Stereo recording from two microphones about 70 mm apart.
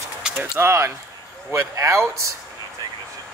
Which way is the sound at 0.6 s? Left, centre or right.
Right.